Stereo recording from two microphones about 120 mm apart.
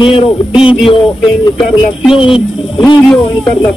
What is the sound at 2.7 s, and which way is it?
Speech, 40° left (ahead or behind).